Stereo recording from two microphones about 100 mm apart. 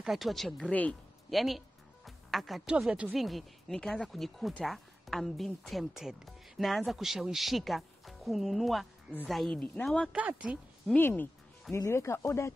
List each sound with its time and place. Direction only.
0.0 s speech: centre (ahead or behind)
0.7 s speech: 10° left (ahead or behind)
1.3 s speech: centre (ahead or behind)
2.0 s music: centre (ahead or behind)
2.8 s speech: 10° right (ahead or behind)
10.1 s speech: 15° right (ahead or behind)
11.0 s speech: 20° left (ahead or behind)